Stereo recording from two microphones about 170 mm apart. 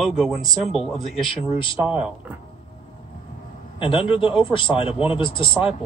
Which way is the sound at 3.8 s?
30° left (ahead or behind).